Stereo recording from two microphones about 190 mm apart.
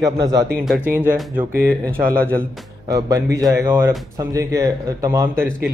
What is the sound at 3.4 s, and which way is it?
Speech, 15° right (ahead or behind).